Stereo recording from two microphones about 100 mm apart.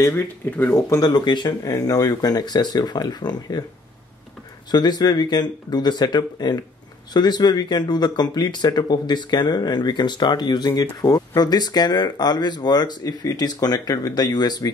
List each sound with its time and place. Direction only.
0.0 s speech: 20° left (ahead or behind)
0.8 s speech: 40° left (ahead or behind)
1.6 s speech: 35° left (ahead or behind)
4.6 s speech: 45° left (ahead or behind)